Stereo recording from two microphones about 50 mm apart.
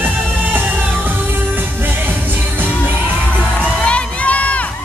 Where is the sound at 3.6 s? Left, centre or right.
Centre.